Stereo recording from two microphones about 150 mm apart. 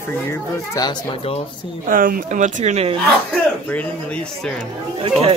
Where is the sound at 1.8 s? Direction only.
70° right (ahead or behind); by 2.9 s 45° right (ahead or behind).